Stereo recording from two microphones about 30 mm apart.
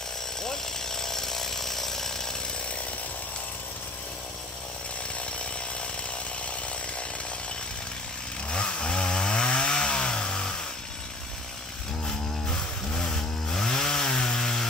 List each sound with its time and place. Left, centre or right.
0.4 s chainsaw: centre
8.5 s chainsaw: left
12.4 s chainsaw: centre